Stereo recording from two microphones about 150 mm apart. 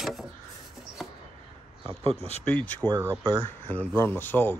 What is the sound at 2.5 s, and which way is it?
Speech, 10° left (ahead or behind).